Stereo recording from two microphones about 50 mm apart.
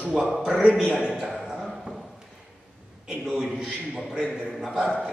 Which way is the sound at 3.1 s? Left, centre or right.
Centre.